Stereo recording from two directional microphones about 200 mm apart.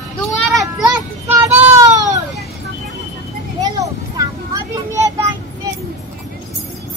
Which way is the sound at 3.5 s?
15° right (ahead or behind).